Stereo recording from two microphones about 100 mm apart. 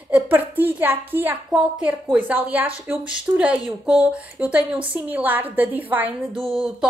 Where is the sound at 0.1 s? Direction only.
20° right (ahead or behind).